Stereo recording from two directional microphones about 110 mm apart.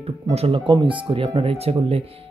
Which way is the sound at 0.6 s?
45° right (ahead or behind).